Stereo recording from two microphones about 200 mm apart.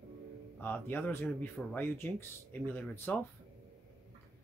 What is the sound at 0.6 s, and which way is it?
Speech, 10° left (ahead or behind).